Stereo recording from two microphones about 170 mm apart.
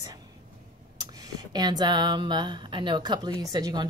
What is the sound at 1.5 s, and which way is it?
A woman's voice, 25° right (ahead or behind).